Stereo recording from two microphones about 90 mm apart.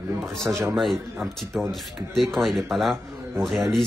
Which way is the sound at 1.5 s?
Centre (ahead or behind).